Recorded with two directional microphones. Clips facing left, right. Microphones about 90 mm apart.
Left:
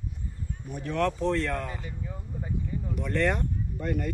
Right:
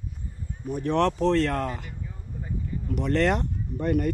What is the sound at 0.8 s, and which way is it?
Speech, 65° right (ahead or behind).